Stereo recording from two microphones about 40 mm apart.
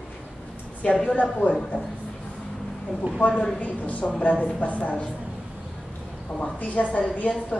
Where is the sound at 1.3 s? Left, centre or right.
Left.